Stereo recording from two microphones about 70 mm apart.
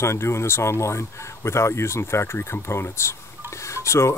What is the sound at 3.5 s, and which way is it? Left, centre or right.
Dishes, left.